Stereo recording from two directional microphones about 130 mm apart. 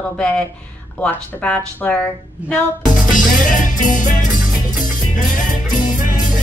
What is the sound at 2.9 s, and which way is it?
Music, 90° left.